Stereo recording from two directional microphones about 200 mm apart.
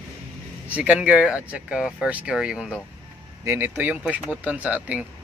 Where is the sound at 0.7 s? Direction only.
5° right (ahead or behind).